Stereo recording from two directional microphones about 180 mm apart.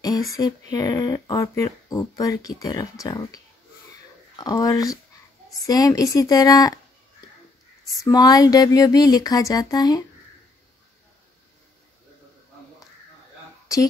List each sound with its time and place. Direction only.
0.3 s speech: 20° left (ahead or behind)
4.4 s speech: 20° left (ahead or behind)
8.0 s speech: 20° left (ahead or behind)